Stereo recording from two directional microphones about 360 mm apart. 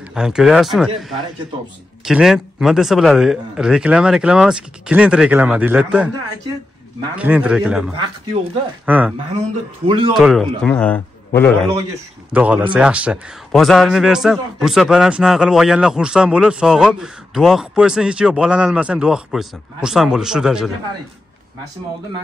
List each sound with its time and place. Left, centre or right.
0.1 s a man's voice: centre
10.1 s a man's voice: centre